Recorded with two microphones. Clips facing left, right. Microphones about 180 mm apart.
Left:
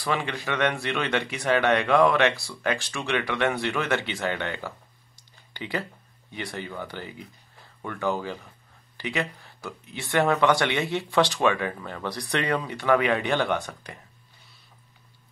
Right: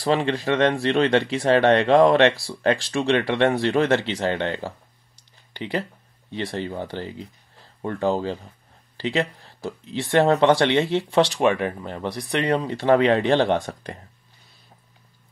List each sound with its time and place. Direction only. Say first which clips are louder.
0.0 s speech: right 7 dB; 30° right (ahead or behind)